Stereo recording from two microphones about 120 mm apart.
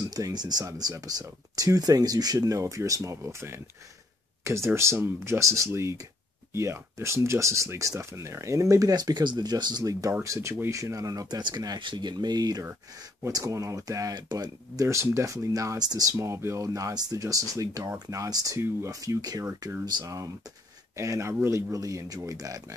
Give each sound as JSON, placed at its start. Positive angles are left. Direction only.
{"t": 0.1, "sound": "speech", "side_deg": -35}